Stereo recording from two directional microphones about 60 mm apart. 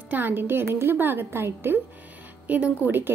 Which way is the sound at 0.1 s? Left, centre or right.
Right.